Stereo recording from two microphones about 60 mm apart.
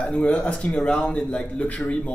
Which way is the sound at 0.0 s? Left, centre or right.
Centre.